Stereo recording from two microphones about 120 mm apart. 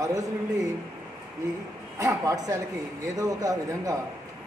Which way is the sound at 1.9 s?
25° right (ahead or behind).